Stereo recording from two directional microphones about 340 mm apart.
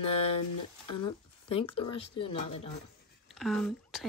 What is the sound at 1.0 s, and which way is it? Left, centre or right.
Speech, centre.